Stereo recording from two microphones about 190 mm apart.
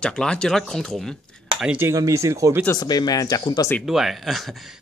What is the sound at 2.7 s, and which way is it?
Speech, 20° left (ahead or behind).